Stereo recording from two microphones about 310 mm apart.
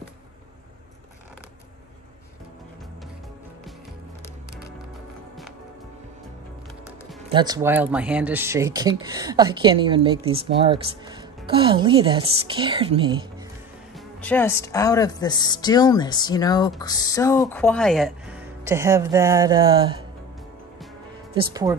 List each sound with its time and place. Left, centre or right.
7.3 s speech: centre
13.9 s a woman's voice: centre
21.4 s speech: centre